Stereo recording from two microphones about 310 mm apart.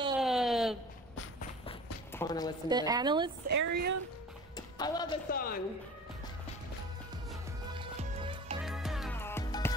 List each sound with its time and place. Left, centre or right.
0.2 s a sound: centre
2.1 s a woman's voice: centre
2.7 s a woman's voice: centre
3.4 s speech: right
4.6 s a sound: centre
5.3 s speech: left
7.7 s music: centre
8.6 s music: centre